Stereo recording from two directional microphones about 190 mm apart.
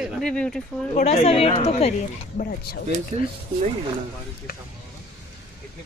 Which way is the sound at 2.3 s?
55° left (ahead or behind).